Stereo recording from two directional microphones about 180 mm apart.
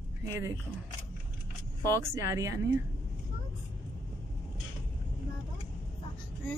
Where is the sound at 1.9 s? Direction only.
15° right (ahead or behind).